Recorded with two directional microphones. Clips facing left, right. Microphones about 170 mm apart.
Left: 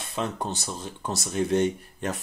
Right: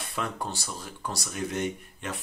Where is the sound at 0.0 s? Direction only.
25° left (ahead or behind).